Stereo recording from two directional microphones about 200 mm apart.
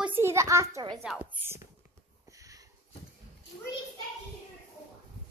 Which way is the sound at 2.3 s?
15° right (ahead or behind).